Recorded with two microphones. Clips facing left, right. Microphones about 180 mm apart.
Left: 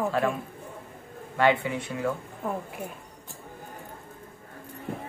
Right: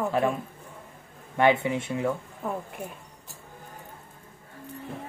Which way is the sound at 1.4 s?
25° right (ahead or behind).